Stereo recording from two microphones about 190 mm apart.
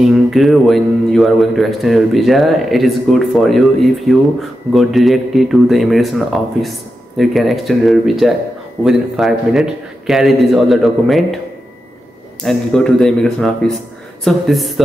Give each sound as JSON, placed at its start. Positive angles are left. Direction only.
{"t": 0.0, "sound": "a man's voice", "side_deg": 0}
{"t": 12.4, "sound": "a man's voice", "side_deg": 5}